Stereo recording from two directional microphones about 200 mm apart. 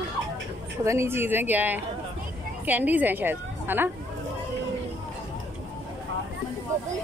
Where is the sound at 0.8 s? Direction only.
15° right (ahead or behind).